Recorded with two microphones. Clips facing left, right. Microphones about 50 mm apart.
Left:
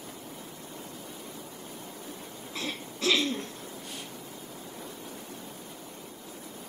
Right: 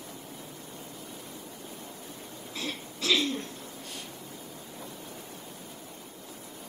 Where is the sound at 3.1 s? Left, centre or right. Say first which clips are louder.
Even; centre.